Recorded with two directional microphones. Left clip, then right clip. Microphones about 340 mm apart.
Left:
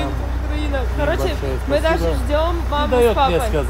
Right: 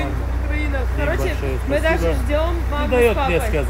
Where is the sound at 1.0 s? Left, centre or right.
Centre.